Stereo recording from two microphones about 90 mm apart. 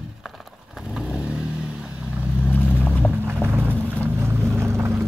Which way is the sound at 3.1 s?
25° right (ahead or behind).